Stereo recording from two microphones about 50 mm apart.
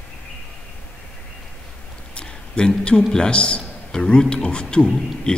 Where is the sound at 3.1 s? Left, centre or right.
Centre.